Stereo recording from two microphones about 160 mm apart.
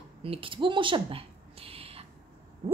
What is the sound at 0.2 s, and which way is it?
A woman's voice, 35° right (ahead or behind).